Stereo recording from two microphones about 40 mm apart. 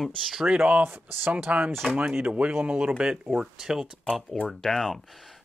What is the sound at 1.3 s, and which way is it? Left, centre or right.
Speech, right.